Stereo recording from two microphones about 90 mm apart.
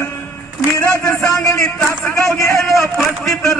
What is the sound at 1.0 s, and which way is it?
Speech, 5° left (ahead or behind).